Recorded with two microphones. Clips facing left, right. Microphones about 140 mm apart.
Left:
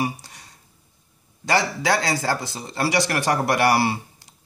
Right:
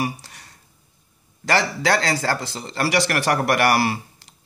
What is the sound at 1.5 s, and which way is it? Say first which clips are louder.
A man's voice: right 1 dB; 15° left (ahead or behind).